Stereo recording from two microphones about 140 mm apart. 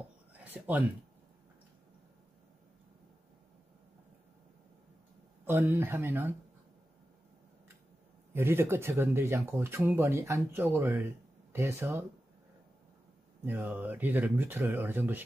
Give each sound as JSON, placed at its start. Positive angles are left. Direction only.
{"t": 0.4, "sound": "a sound", "side_deg": -10}
{"t": 5.4, "sound": "speech", "side_deg": -15}
{"t": 8.3, "sound": "speech", "side_deg": -15}
{"t": 13.5, "sound": "speech", "side_deg": -15}